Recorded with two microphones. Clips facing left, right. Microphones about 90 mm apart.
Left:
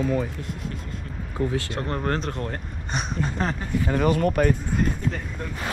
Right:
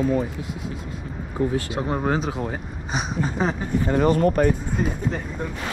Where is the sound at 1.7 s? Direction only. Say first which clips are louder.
Right 3 dB; 10° right (ahead or behind).